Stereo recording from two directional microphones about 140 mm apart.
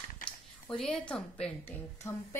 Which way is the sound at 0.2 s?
5° left (ahead or behind).